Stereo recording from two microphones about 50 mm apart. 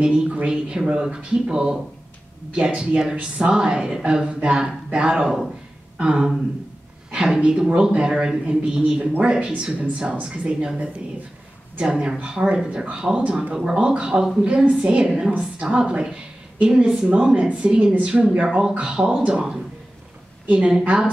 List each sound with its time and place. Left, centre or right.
0.0 s speech: centre
15.0 s speech: centre
15.3 s a woman's voice: centre